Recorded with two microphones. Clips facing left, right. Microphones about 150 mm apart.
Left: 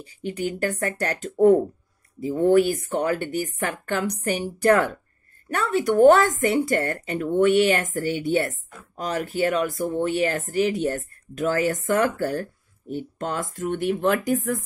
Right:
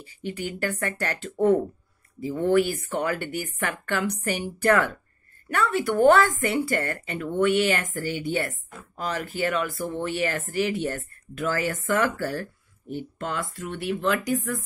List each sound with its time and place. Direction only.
0.2 s speech: 45° left (ahead or behind)